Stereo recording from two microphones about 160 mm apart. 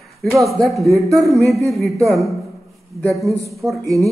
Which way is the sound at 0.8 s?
20° right (ahead or behind).